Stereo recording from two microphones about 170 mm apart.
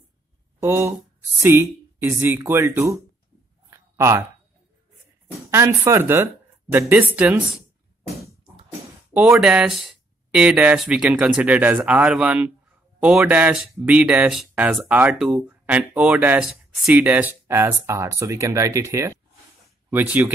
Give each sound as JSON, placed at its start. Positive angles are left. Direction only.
{"t": 0.6, "sound": "speech", "side_deg": -15}
{"t": 3.7, "sound": "a sound", "side_deg": -15}
{"t": 5.5, "sound": "speech", "side_deg": -15}
{"t": 9.1, "sound": "speech", "side_deg": -10}